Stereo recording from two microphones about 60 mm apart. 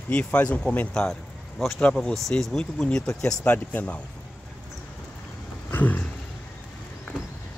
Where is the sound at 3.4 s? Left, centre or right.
Left.